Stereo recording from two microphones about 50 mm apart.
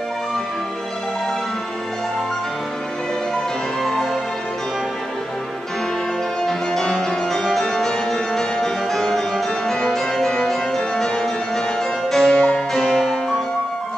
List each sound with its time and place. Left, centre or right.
3.8 s music: centre
6.4 s music: centre